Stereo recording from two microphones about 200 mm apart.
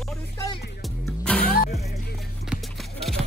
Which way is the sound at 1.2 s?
5° left (ahead or behind).